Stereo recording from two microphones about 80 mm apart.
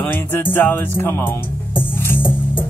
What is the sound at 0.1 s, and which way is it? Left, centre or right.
Speech, left.